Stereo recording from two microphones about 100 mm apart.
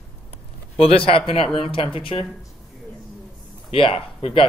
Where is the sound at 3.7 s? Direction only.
80° left.